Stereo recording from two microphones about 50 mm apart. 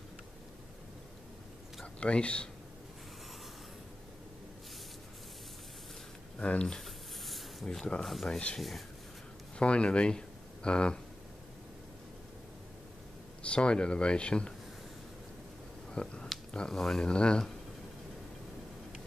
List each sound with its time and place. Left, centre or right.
2.0 s speech: left
6.4 s speech: left
6.8 s a sound: centre
8.0 s speech: centre
8.3 s speech: left
8.5 s speech: centre
9.6 s speech: left
13.4 s speech: left
15.9 s speech: centre
17.0 s speech: centre